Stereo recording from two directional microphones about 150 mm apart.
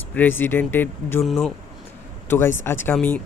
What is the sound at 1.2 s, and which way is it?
Speech, centre (ahead or behind).